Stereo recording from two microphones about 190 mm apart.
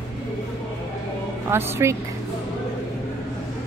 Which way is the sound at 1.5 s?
15° right (ahead or behind).